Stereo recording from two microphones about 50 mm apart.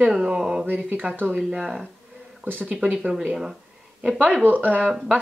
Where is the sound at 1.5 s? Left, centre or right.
Centre.